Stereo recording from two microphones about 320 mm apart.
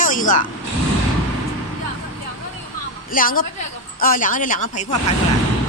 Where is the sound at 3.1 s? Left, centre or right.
Left.